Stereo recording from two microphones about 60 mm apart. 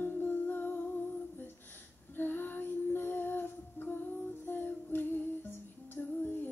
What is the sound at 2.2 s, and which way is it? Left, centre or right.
Female singing, left.